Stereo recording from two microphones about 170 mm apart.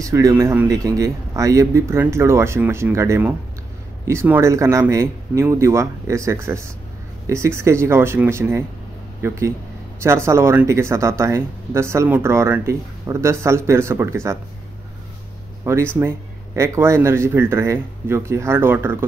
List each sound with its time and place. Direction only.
0.0 s speech: 20° right (ahead or behind)
15.7 s speech: 15° right (ahead or behind)